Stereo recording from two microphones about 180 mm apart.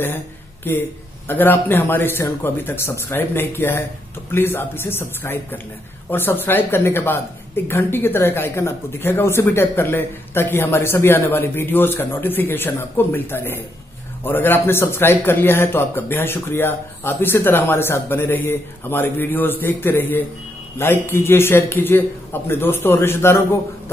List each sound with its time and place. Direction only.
0.7 s a man's voice: 10° left (ahead or behind)